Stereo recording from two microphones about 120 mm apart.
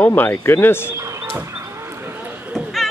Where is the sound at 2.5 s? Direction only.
Centre (ahead or behind).